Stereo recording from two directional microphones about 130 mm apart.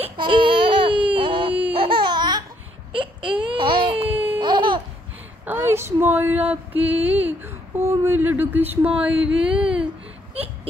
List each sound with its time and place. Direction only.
0.2 s baby cry: 40° right (ahead or behind)
1.7 s laughter: 40° right (ahead or behind)
2.9 s baby cry: 40° right (ahead or behind)
4.1 s baby cry: 15° right (ahead or behind)
4.4 s laughter: 35° right (ahead or behind)
5.4 s a sound: 15° right (ahead or behind)